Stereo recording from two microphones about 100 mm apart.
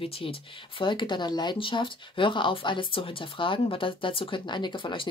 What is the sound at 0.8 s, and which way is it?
A woman's voice, 55° left (ahead or behind).